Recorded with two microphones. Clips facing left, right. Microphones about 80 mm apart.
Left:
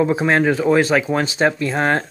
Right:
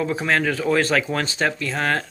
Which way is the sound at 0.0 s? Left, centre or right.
Left.